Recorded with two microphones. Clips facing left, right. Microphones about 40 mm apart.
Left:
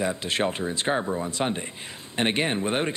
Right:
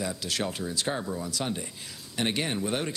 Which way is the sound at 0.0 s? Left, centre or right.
Left.